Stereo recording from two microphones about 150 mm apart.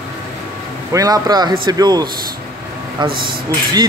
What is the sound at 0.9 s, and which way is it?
Speech, 25° right (ahead or behind).